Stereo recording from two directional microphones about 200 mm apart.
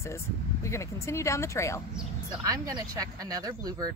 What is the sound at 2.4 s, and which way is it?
Speech, 20° right (ahead or behind).